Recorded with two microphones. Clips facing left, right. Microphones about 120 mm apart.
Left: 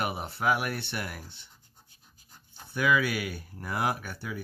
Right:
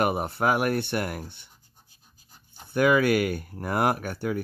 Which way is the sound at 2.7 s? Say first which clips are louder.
Right 6 dB; 50° right (ahead or behind).